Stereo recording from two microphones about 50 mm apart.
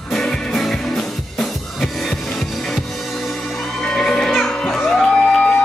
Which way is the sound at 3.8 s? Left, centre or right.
Centre.